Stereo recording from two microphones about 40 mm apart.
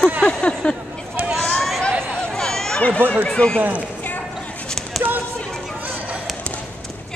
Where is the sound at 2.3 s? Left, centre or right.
Centre.